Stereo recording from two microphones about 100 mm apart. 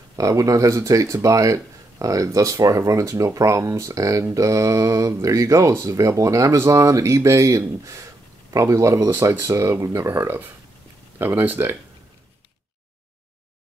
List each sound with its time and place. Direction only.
0.1 s speech: 35° right (ahead or behind)